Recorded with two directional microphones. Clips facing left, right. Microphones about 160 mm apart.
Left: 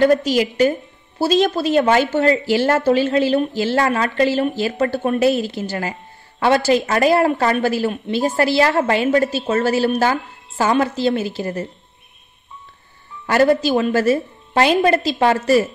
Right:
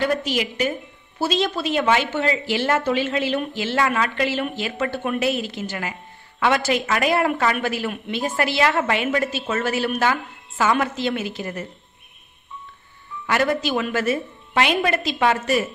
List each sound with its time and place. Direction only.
0.0 s a woman's voice: 40° left (ahead or behind)
13.3 s a woman's voice: 35° left (ahead or behind)